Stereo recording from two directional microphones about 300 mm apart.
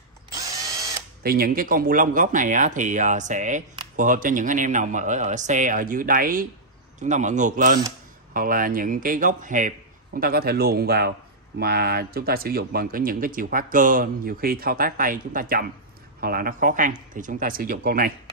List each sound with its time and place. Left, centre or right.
1.2 s a man's voice: right